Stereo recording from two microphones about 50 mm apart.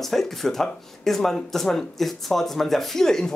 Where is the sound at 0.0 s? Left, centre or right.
Centre.